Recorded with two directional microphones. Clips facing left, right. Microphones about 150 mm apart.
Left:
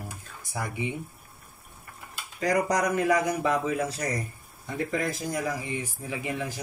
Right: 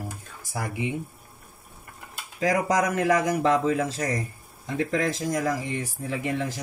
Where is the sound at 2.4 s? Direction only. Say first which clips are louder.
Right 2 dB; 90° right.